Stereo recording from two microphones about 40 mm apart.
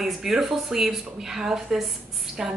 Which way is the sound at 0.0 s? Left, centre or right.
Centre.